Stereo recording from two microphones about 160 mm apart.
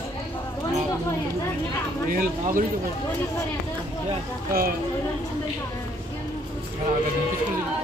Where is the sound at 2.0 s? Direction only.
60° right (ahead or behind).